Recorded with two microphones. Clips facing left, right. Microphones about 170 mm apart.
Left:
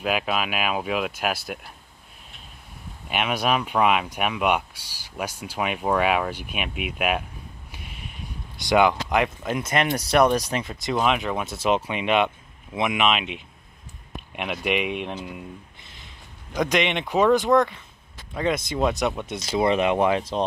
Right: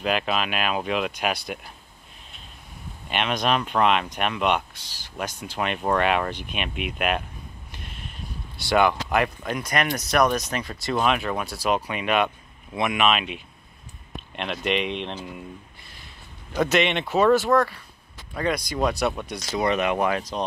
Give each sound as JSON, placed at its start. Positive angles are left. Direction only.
{"t": 0.0, "sound": "speech", "side_deg": 5}
{"t": 3.1, "sound": "speech", "side_deg": 5}
{"t": 7.7, "sound": "a sound", "side_deg": 10}
{"t": 8.5, "sound": "speech", "side_deg": 15}
{"t": 10.7, "sound": "speech", "side_deg": 15}
{"t": 15.8, "sound": "a sound", "side_deg": 20}
{"t": 16.5, "sound": "speech", "side_deg": 15}